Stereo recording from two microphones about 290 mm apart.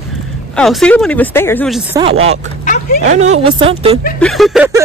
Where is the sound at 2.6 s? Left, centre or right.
Left.